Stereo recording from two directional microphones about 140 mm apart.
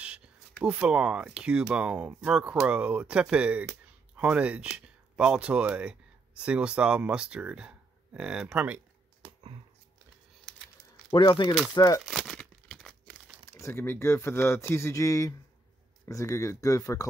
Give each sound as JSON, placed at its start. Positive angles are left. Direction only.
{"t": 0.7, "sound": "speech", "side_deg": -10}
{"t": 11.1, "sound": "speech", "side_deg": 35}
{"t": 12.0, "sound": "crumpling", "side_deg": 0}
{"t": 13.5, "sound": "speech", "side_deg": 20}